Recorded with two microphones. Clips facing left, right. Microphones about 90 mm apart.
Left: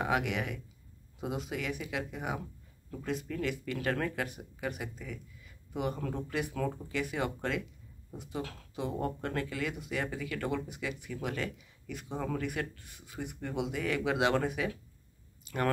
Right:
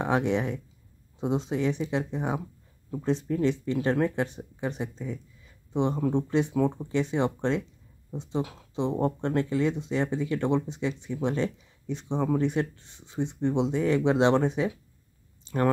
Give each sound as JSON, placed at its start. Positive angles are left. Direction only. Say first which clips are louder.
{"t": 0.0, "sound": "speech", "louder": "right 6 dB", "side_deg": -30}
{"t": 15.4, "sound": "clicking", "louder": "right 6 dB", "side_deg": -30}